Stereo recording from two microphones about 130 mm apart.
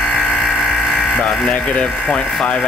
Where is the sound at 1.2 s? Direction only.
Centre (ahead or behind).